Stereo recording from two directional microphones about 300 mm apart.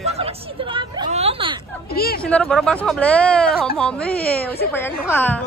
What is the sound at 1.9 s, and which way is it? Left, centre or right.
Speech, left.